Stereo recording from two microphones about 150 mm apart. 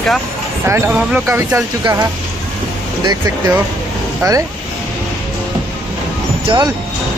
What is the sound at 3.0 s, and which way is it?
Speech, 25° right (ahead or behind).